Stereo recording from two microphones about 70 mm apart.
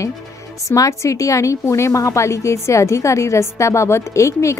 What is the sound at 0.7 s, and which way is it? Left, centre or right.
A woman's voice, left.